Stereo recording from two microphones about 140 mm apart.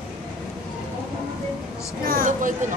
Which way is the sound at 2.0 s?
75° right (ahead or behind).